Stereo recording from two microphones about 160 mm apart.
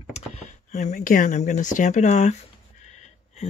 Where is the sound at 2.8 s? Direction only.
45° left (ahead or behind).